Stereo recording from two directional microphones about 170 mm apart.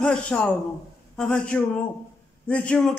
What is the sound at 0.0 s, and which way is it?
A man's voice, 5° left (ahead or behind).